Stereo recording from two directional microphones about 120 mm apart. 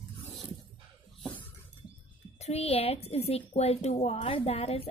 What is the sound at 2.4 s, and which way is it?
A woman's voice, 60° left (ahead or behind).